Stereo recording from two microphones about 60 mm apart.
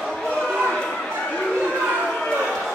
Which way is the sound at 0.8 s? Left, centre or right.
Centre.